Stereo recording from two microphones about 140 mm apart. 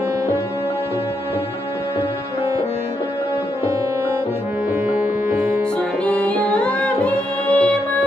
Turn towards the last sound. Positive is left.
turn(degrees=10)  # may be behind; listen again after turning